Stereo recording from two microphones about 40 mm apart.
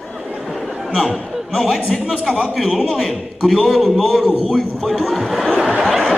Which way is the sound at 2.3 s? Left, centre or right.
Centre.